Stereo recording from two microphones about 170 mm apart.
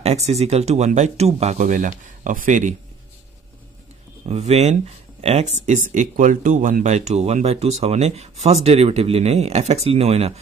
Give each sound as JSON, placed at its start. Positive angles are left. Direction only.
{"t": 0.0, "sound": "speech", "side_deg": -40}
{"t": 4.3, "sound": "speech", "side_deg": -40}
{"t": 5.7, "sound": "speech", "side_deg": -50}